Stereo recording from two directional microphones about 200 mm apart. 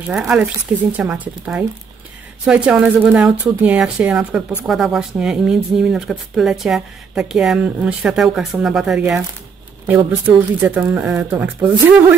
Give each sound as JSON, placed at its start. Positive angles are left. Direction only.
{"t": 0.1, "sound": "a woman's voice", "side_deg": -5}